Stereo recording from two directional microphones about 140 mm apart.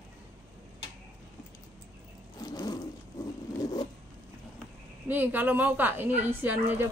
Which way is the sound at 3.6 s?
25° left (ahead or behind).